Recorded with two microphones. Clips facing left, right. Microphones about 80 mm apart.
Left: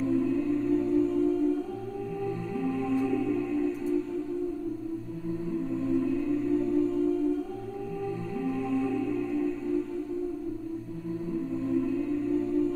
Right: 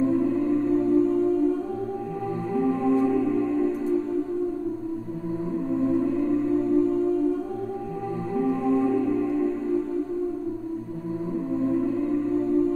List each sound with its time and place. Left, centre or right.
0.0 s music: right
5.7 s music: right
8.4 s music: right
11.5 s music: right